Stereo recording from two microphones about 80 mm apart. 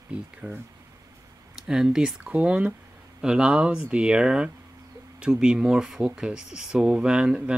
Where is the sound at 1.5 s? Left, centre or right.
Centre.